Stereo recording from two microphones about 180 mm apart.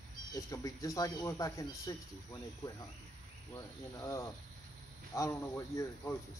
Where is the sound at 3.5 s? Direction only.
20° left (ahead or behind).